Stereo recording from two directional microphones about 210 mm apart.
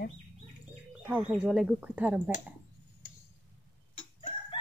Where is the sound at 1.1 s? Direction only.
5° right (ahead or behind).